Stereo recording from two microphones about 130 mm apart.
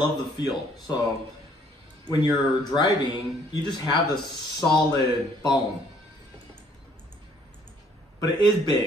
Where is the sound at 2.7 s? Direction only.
35° left (ahead or behind).